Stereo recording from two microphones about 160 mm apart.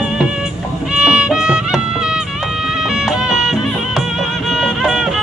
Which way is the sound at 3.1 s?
5° right (ahead or behind).